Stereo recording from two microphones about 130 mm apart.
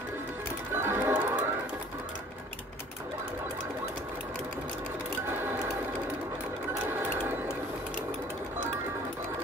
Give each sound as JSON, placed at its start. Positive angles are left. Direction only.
{"t": 0.7, "sound": "music", "side_deg": -20}
{"t": 5.4, "sound": "sewing machine", "side_deg": -15}